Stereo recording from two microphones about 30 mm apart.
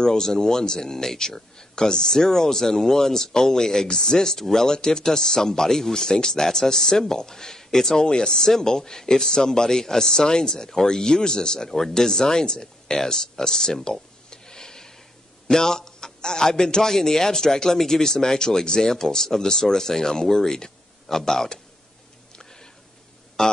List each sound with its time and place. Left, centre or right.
0.0 s speech: centre
4.7 s speech: left
8.0 s speech: left
14.3 s a sound: left
15.4 s speech: centre
22.3 s a sound: left